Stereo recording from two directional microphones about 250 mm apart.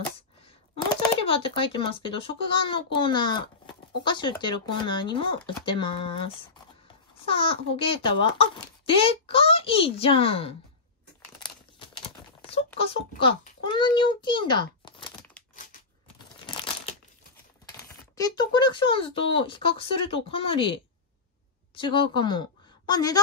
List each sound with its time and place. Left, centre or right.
1.2 s a child's voice: left
11.4 s crumpling: centre
13.2 s a child's voice: left
18.1 s a child's voice: centre